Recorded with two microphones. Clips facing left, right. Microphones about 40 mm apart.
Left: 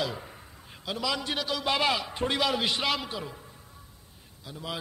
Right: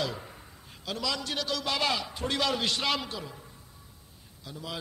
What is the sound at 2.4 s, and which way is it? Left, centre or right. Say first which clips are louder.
Speech: even; centre.